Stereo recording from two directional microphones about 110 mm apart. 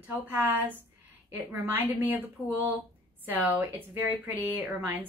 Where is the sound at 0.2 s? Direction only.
15° right (ahead or behind).